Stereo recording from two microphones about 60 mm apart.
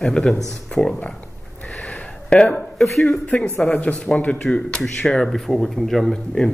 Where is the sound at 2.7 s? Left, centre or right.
Centre.